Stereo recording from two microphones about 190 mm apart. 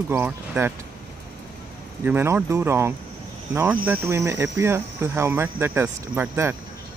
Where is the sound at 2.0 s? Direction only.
10° right (ahead or behind).